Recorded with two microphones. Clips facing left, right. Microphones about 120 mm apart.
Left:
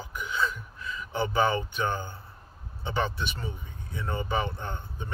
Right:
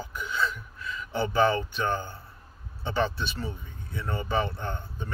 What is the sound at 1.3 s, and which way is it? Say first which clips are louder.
A man's voice: right 3 dB; 15° left (ahead or behind).